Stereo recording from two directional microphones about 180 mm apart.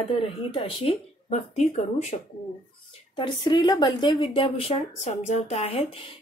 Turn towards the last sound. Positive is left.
turn(degrees=35)  # may be behind; listen again after turning